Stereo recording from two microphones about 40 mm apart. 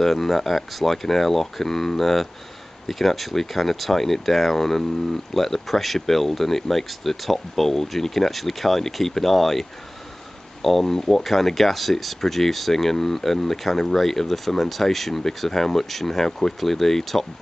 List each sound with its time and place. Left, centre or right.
0.0 s speech: centre